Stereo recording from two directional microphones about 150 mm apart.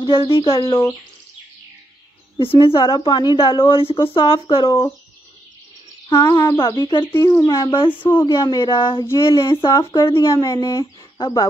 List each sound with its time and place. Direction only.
0.0 s a woman's voice: 30° left (ahead or behind)
2.3 s a woman's voice: 35° left (ahead or behind)
4.6 s speech: 25° left (ahead or behind)
6.0 s speech: 20° left (ahead or behind)
7.9 s speech: 15° left (ahead or behind)
8.6 s a woman's voice: 35° left (ahead or behind)
9.0 s speech: 20° left (ahead or behind)
9.5 s speech: 30° left (ahead or behind)
10.0 s speech: 20° left (ahead or behind)
11.1 s speech: 35° left (ahead or behind)